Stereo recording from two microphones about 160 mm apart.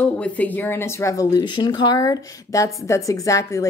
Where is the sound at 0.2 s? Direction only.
10° left (ahead or behind).